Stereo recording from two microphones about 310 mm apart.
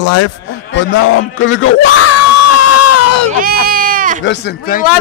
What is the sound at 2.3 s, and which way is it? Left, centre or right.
Crowd, left.